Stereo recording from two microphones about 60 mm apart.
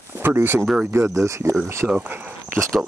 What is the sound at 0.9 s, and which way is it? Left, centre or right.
Speech, right.